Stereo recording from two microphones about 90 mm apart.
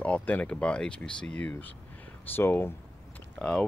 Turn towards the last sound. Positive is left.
turn(degrees=10)  # may be behind; listen again after turning